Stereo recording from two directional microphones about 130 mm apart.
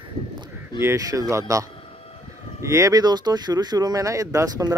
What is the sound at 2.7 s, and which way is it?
Speech, 25° right (ahead or behind).